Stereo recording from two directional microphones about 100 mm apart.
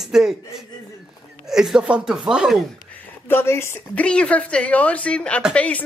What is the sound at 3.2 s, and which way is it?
Speech, 25° left (ahead or behind).